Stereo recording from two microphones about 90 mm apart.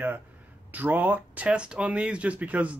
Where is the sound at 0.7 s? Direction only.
20° right (ahead or behind).